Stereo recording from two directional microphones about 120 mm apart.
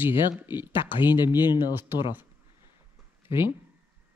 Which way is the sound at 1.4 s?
40° left (ahead or behind).